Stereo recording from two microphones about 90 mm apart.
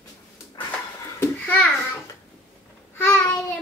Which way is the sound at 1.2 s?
20° left (ahead or behind).